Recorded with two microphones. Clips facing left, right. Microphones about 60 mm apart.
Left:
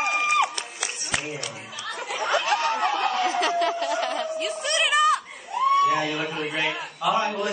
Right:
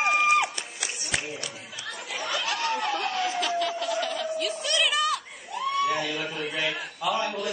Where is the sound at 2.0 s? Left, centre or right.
Left.